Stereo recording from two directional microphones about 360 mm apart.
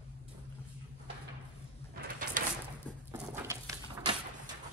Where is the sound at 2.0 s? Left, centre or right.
Right.